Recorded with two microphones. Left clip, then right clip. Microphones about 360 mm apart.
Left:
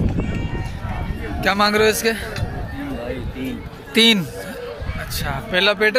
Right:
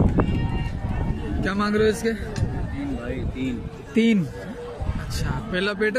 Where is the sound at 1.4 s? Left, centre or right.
Centre.